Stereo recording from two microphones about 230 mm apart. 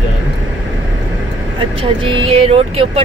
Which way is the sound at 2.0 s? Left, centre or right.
Right.